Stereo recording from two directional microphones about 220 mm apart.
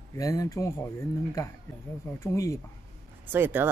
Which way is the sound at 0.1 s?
15° left (ahead or behind).